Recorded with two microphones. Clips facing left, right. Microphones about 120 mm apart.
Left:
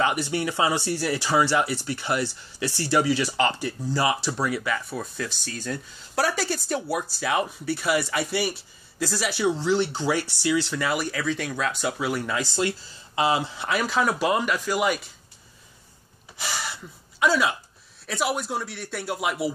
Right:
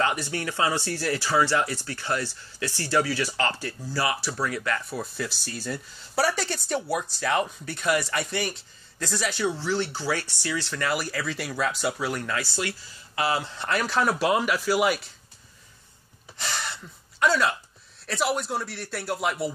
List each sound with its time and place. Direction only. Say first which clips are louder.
0.0 s speech: left 3 dB; 15° left (ahead or behind)
10.9 s speech: left 2 dB; centre (ahead or behind)
12.3 s speech: left 4 dB; 20° left (ahead or behind)
13.6 s speech: left 1 dB; 5° left (ahead or behind)
16.3 s gasp: left 1 dB; 5° left (ahead or behind)
18.0 s speech: even; centre (ahead or behind)